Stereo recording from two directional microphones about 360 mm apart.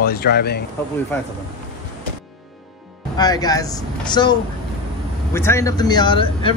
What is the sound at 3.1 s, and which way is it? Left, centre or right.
Speech, centre.